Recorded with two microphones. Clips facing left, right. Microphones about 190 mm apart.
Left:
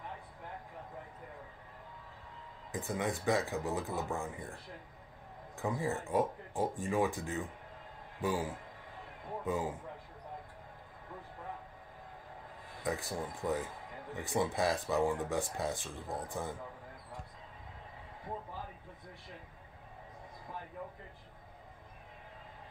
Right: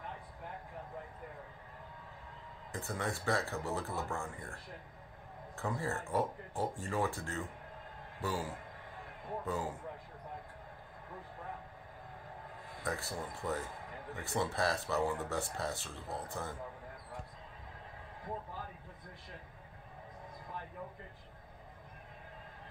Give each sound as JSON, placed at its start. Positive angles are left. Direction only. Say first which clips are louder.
{"t": 2.7, "sound": "speech", "louder": "left 3 dB", "side_deg": 15}
{"t": 5.6, "sound": "speech", "louder": "left 3 dB", "side_deg": 15}
{"t": 12.8, "sound": "speech", "louder": "left 3 dB", "side_deg": 15}